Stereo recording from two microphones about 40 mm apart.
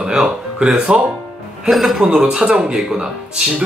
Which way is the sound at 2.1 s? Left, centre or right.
Right.